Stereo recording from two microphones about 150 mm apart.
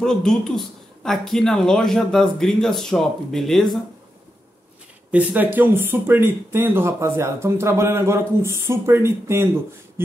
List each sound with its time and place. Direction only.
0.0 s speech: 5° left (ahead or behind)
5.1 s speech: 10° right (ahead or behind)